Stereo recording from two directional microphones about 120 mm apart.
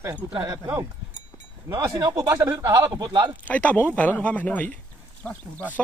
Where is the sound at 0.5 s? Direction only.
25° right (ahead or behind).